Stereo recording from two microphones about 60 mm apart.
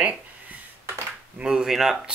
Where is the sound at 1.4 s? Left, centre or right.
Centre.